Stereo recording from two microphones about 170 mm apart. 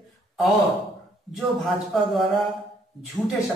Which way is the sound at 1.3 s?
Centre (ahead or behind).